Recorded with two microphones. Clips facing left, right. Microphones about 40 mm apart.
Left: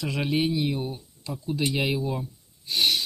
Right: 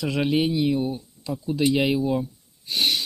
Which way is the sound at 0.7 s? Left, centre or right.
Centre.